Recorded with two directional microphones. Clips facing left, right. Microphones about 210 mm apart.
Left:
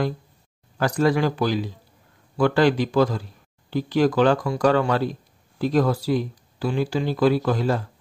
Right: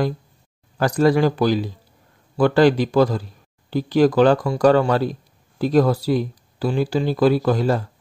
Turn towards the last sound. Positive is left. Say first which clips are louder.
# right 3 dB
turn(degrees=-40)  # may be behind; listen again after turning